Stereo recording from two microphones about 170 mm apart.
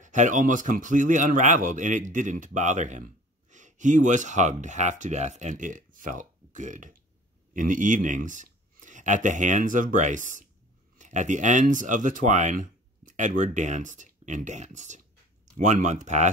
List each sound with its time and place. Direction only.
0.0 s speech: 45° right (ahead or behind)